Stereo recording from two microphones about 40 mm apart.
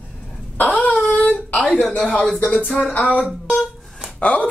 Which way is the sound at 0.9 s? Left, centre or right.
Left.